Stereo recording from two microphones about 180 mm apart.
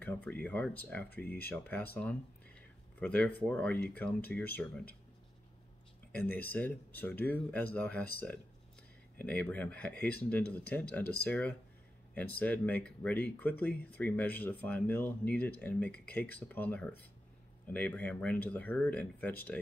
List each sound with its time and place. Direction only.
0.0 s speech: 10° left (ahead or behind)
3.0 s speech: 10° left (ahead or behind)
6.1 s speech: 10° left (ahead or behind)
9.2 s speech: 10° left (ahead or behind)